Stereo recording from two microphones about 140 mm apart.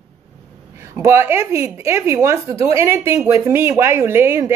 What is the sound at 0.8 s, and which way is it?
A woman's voice, 20° right (ahead or behind).